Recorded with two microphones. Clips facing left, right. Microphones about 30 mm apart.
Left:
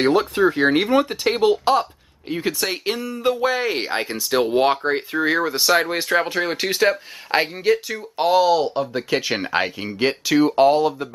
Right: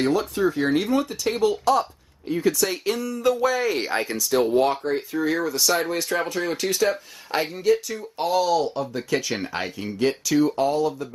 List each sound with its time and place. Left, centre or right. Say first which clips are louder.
0.0 s speech: left 5 dB; left